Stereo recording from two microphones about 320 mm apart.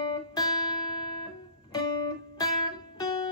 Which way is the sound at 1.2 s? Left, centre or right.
Centre.